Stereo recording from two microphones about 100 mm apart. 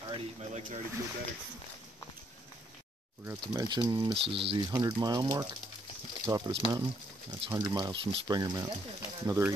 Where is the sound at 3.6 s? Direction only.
45° right (ahead or behind).